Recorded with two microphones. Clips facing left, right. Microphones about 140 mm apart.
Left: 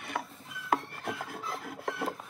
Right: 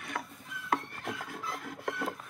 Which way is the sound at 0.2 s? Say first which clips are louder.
Left 3 dB; 5° left (ahead or behind).